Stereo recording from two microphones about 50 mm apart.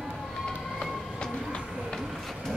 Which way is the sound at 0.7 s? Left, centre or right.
Centre.